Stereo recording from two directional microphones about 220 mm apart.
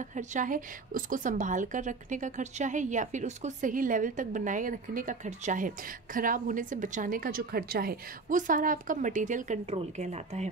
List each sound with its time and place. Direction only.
0.1 s a woman's voice: 35° right (ahead or behind)